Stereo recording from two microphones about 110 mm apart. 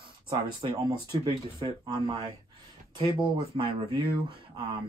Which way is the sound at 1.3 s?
35° right (ahead or behind).